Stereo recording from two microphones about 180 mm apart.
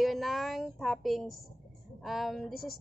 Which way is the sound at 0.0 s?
Centre (ahead or behind).